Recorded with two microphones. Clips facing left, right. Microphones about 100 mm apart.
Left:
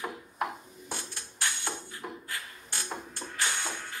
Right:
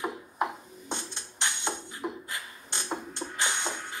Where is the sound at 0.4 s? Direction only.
20° right (ahead or behind).